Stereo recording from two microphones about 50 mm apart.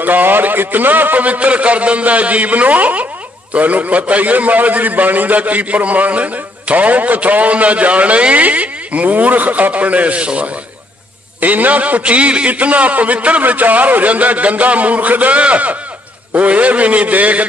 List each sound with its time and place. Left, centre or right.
0.0 s a man's voice: right
11.4 s a man's voice: right